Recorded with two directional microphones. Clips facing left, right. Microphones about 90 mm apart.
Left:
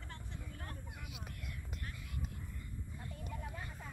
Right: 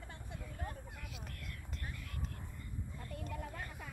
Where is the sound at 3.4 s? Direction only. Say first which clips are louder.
Right 2 dB; 70° right (ahead or behind).